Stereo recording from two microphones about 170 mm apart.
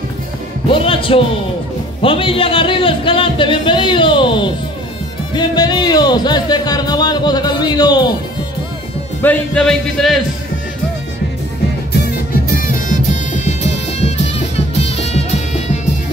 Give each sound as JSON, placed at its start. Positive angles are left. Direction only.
{"t": 0.7, "sound": "speech", "side_deg": 30}
{"t": 9.2, "sound": "speech", "side_deg": 10}
{"t": 12.8, "sound": "music", "side_deg": 50}